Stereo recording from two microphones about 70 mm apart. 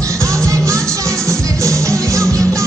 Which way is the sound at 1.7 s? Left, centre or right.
Right.